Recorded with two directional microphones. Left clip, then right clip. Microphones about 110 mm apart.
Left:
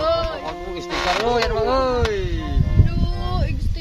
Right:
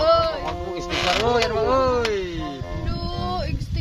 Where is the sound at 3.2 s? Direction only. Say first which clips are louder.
Right 2 dB; 25° right (ahead or behind).